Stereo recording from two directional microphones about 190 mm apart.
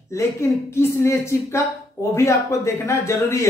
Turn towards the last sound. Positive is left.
turn(degrees=15)  # may be behind; listen again after turning